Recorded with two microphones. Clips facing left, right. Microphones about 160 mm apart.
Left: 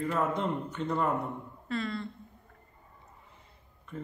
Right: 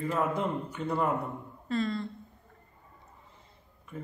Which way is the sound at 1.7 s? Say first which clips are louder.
Right 3 dB; 35° right (ahead or behind).